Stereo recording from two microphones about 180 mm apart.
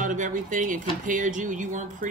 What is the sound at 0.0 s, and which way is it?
Speech, 45° right (ahead or behind).